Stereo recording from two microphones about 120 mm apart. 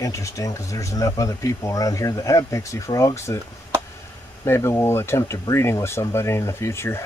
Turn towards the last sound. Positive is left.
turn(degrees=20)  # may be behind; listen again after turning